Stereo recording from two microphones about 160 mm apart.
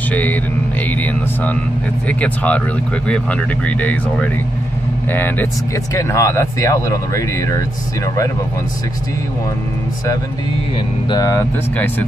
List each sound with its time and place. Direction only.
0.1 s speech: 10° left (ahead or behind)
2.0 s speech: 10° left (ahead or behind)
11.1 s speech: 20° left (ahead or behind)